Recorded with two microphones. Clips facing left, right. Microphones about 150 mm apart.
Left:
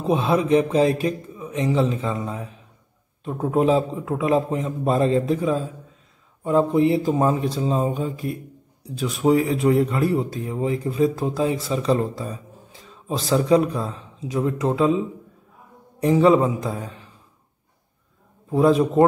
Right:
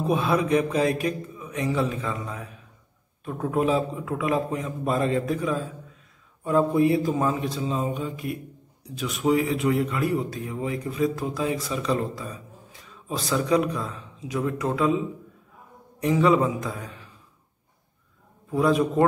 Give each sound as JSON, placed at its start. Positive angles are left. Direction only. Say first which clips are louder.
{"t": 0.0, "sound": "speech", "louder": "left 3 dB", "side_deg": 25}
{"t": 16.0, "sound": "speech", "louder": "left 4 dB", "side_deg": 30}
{"t": 18.5, "sound": "speech", "louder": "left 4 dB", "side_deg": 30}